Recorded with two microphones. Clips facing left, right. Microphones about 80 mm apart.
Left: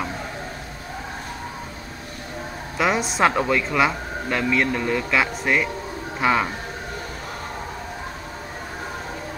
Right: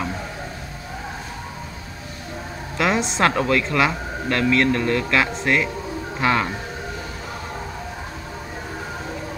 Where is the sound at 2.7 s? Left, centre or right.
Centre.